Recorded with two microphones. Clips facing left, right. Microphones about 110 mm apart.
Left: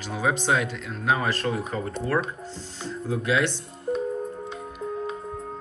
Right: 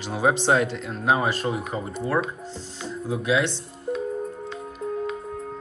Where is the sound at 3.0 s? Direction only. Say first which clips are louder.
Right 1 dB; 15° right (ahead or behind).